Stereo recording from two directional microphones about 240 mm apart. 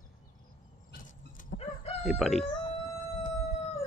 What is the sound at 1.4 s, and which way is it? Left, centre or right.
Chicken, left.